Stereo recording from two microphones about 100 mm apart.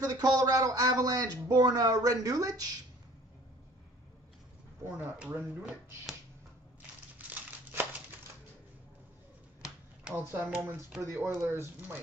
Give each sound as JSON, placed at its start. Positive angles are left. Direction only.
{"t": 0.0, "sound": "speech", "side_deg": -40}
{"t": 4.8, "sound": "speech", "side_deg": -20}
{"t": 7.2, "sound": "crumpling", "side_deg": -15}
{"t": 10.1, "sound": "speech", "side_deg": -20}